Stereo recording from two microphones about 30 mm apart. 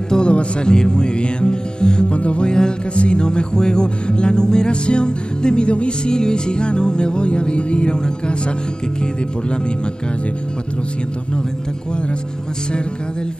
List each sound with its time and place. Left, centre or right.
0.3 s speech: left
0.7 s music: left
2.0 s music: left
2.4 s music: left
2.9 s music: left